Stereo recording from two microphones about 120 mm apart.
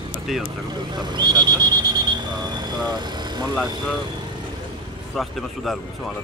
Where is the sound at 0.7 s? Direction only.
35° right (ahead or behind).